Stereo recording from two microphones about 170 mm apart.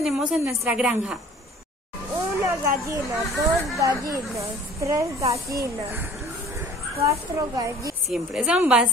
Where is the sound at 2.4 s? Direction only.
15° right (ahead or behind).